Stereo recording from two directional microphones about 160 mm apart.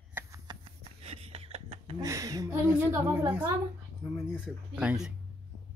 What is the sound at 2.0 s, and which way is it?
Speech, 20° right (ahead or behind).